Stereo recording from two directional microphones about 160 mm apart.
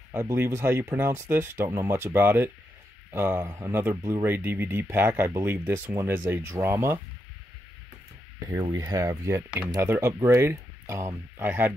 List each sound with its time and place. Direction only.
0.1 s speech: 20° right (ahead or behind)
8.5 s speech: 25° right (ahead or behind)